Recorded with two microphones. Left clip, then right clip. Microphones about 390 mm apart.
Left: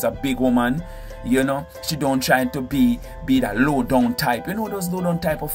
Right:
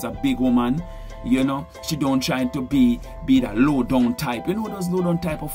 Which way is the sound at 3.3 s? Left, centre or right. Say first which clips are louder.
Even; left.